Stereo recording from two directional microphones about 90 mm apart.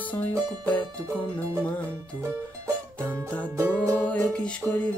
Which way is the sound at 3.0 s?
15° left (ahead or behind).